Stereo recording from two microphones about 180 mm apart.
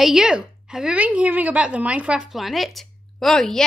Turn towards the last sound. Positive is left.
turn(degrees=0)  # may be behind; listen again after turning